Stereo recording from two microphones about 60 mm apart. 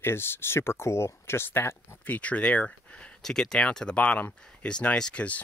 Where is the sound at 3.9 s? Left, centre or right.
Left.